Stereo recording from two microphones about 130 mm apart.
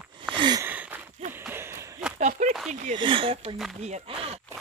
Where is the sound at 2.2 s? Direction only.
70° right (ahead or behind).